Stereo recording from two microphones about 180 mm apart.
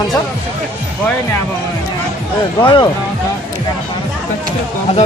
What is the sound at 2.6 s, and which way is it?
Speech, 25° left (ahead or behind).